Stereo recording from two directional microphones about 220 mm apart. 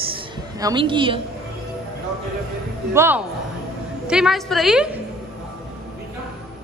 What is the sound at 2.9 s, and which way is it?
A woman's voice, 10° right (ahead or behind).